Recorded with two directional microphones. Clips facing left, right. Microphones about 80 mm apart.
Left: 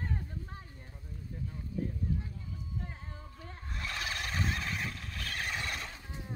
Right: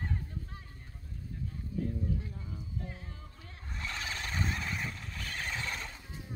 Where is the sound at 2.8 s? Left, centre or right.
Left.